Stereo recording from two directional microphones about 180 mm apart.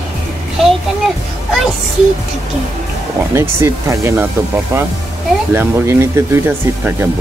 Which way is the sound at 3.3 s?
15° right (ahead or behind).